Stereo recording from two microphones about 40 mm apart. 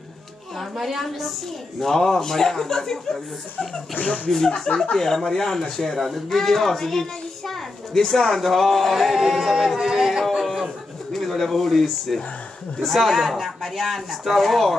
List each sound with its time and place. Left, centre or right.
0.7 s speech: centre
1.8 s a man's voice: centre
3.9 s speech: left
4.9 s a man's voice: centre
9.8 s music: centre
11.1 s speech: centre